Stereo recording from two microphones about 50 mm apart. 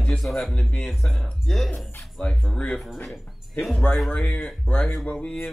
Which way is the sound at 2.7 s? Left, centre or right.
Centre.